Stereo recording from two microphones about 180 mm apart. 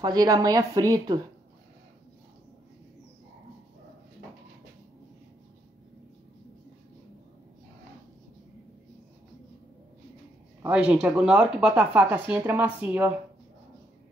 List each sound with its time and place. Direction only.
0.0 s speech: 20° right (ahead or behind)
10.6 s speech: 5° right (ahead or behind)